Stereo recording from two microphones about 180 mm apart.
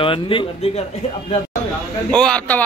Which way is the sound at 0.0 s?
30° left (ahead or behind).